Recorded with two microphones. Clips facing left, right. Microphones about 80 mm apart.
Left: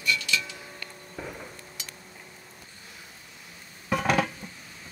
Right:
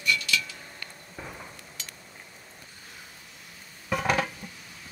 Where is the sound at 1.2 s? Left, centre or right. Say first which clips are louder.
Left 3 dB; centre.